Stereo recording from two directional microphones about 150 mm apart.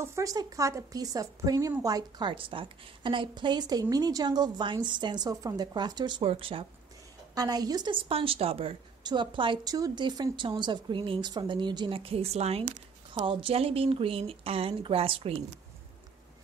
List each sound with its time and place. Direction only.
0.0 s a woman's voice: 20° right (ahead or behind); by 6.6 s 40° right (ahead or behind)
7.3 s a woman's voice: 25° right (ahead or behind); by 12.6 s 45° right (ahead or behind)
13.1 s a woman's voice: 35° right (ahead or behind)